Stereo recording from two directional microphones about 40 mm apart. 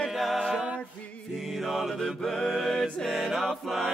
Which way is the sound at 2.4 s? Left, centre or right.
Centre.